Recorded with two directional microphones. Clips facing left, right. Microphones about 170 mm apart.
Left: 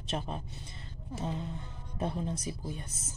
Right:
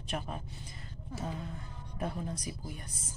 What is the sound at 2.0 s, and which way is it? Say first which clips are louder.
Speech: left 3 dB; 25° left (ahead or behind).